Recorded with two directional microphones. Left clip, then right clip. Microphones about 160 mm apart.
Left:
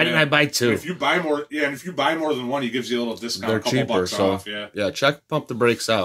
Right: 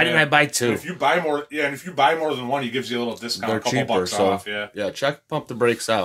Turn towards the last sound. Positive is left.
turn(degrees=0)  # may be behind; listen again after turning